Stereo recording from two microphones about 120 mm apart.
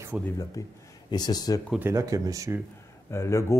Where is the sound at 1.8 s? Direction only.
25° right (ahead or behind).